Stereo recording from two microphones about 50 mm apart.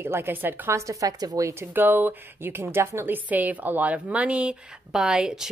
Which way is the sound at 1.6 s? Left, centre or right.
Right.